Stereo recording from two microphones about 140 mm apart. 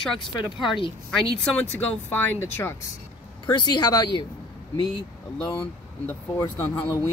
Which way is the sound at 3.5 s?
30° left (ahead or behind).